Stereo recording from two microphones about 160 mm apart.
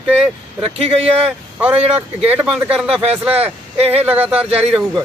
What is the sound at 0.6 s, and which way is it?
Speech, 35° right (ahead or behind).